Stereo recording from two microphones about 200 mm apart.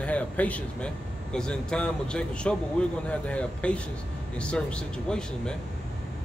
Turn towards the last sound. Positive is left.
turn(degrees=5)  # may be behind; listen again after turning